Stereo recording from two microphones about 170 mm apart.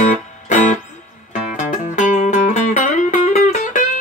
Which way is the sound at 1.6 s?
45° left (ahead or behind).